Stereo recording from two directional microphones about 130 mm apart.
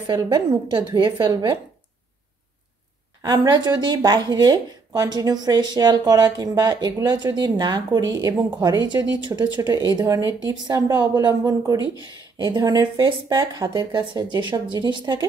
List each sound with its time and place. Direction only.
0.0 s speech: 30° right (ahead or behind)
3.2 s speech: 30° right (ahead or behind)
11.8 s speech: 35° left (ahead or behind)
12.4 s speech: 30° right (ahead or behind)